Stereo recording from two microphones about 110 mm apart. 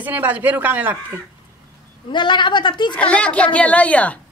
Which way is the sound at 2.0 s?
45° left (ahead or behind).